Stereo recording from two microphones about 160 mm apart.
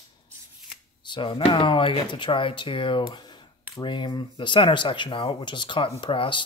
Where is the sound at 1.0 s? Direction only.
30° left (ahead or behind).